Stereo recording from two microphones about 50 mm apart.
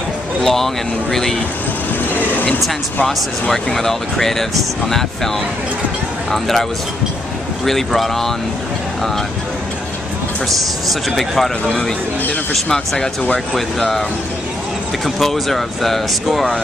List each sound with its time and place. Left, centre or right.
0.4 s speech: centre
2.1 s vehicle: left
3.1 s speech: centre
6.3 s speech: centre
7.6 s speech: centre
10.6 s speech: centre
12.6 s speech: centre
15.0 s speech: centre